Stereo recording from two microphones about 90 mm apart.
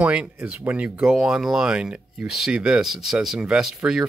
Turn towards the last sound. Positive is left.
turn(degrees=-5)  # may be behind; listen again after turning